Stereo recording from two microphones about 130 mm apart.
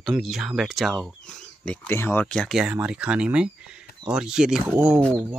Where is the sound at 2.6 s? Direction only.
10° right (ahead or behind).